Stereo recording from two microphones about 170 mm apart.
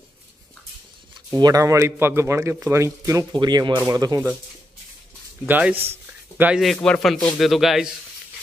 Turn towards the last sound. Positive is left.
turn(degrees=0)  # may be behind; listen again after turning